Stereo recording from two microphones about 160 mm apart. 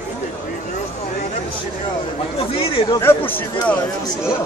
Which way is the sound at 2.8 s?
30° left (ahead or behind).